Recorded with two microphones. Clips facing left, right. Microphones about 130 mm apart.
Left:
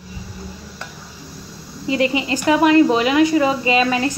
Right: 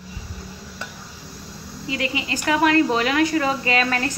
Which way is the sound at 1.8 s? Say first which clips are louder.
Left 8 dB; 30° left (ahead or behind).